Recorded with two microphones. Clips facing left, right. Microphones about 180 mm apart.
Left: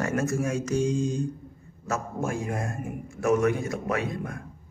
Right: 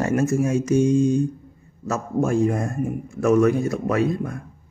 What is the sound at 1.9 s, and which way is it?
Speech, 40° right (ahead or behind).